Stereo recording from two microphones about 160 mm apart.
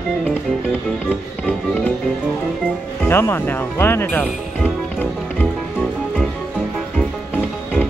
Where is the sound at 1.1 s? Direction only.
10° left (ahead or behind).